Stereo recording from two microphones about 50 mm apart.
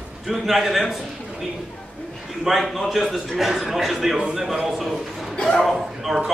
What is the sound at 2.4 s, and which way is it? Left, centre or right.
A man's voice, centre.